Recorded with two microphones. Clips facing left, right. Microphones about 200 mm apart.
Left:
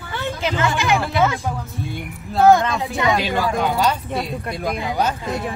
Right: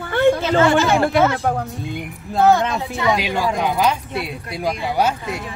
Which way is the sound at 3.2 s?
15° right (ahead or behind).